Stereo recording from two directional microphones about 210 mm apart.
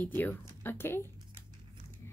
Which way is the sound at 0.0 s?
10° left (ahead or behind).